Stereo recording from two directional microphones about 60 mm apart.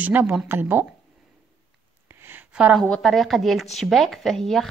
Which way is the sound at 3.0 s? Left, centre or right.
Centre.